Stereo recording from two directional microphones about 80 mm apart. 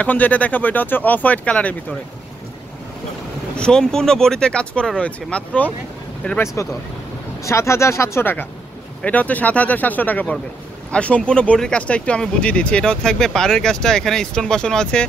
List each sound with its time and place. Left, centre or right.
0.0 s speech: centre
3.5 s speech: centre
6.4 s speech: left; by 15.0 s centre